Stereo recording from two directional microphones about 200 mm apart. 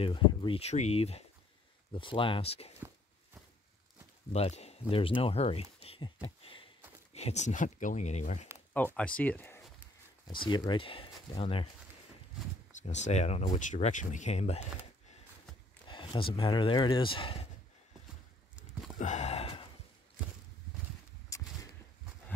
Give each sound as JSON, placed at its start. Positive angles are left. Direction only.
{"t": 0.0, "sound": "speech", "side_deg": 25}
{"t": 4.3, "sound": "speech", "side_deg": 30}
{"t": 6.2, "sound": "a sound", "side_deg": 25}
{"t": 7.2, "sound": "speech", "side_deg": 35}
{"t": 8.7, "sound": "speech", "side_deg": 5}
{"t": 10.2, "sound": "speech", "side_deg": 25}
{"t": 12.8, "sound": "speech", "side_deg": 35}
{"t": 15.9, "sound": "speech", "side_deg": 25}
{"t": 18.9, "sound": "sigh", "side_deg": 35}
{"t": 21.3, "sound": "a sound", "side_deg": 15}